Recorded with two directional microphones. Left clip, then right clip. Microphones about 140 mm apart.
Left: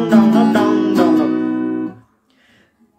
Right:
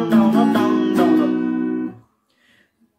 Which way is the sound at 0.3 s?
15° left (ahead or behind).